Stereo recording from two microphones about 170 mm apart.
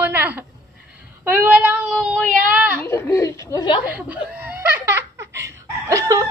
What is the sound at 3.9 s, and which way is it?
Laughter, 10° right (ahead or behind).